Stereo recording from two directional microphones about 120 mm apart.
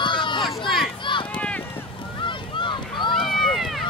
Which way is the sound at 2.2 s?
40° left (ahead or behind).